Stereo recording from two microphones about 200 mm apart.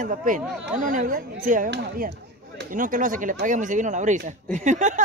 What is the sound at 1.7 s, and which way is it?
Speech, 55° right (ahead or behind).